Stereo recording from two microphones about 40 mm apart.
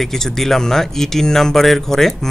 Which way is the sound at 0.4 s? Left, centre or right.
Centre.